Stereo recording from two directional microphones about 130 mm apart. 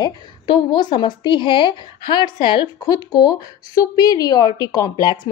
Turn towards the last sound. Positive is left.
turn(degrees=30)  # may be behind; listen again after turning